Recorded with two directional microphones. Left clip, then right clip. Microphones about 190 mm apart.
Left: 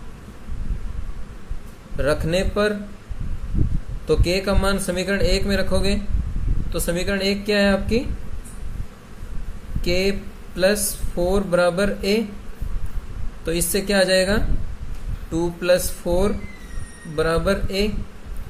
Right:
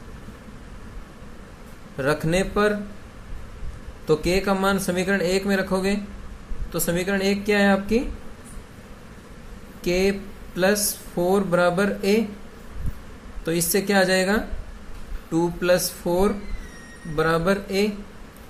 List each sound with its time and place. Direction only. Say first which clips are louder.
2.0 s a man's voice: left 1 dB; 20° right (ahead or behind)
4.1 s a man's voice: even; 20° right (ahead or behind)
6.7 s a man's voice: left 1 dB; 20° right (ahead or behind)
9.8 s a man's voice: even; 20° right (ahead or behind)
13.5 s a man's voice: even; 20° right (ahead or behind)